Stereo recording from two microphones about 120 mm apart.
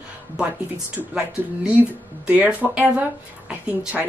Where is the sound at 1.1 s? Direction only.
15° right (ahead or behind).